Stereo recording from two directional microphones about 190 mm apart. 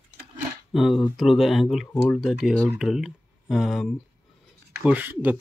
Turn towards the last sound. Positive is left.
turn(degrees=-10)  # may be behind; listen again after turning